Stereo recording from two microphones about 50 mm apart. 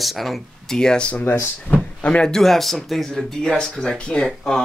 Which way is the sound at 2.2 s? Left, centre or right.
Centre.